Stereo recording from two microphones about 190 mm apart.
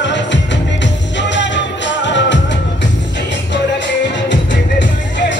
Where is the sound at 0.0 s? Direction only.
70° left (ahead or behind).